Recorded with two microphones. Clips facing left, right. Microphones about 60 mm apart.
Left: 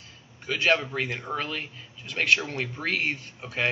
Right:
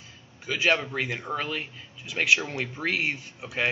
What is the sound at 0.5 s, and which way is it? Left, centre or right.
A man's voice, centre.